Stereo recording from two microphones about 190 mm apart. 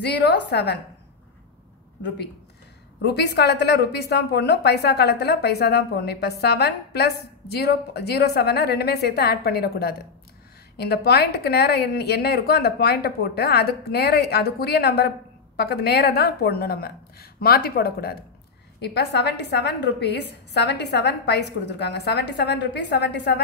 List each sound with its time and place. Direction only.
0.0 s a woman's voice: 60° left (ahead or behind)
3.0 s a woman's voice: 60° left (ahead or behind)